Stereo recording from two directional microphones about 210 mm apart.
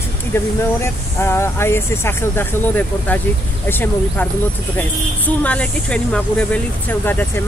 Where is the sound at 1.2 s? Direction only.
10° left (ahead or behind).